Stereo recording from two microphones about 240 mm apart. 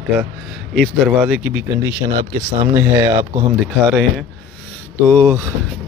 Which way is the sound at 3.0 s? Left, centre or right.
Centre.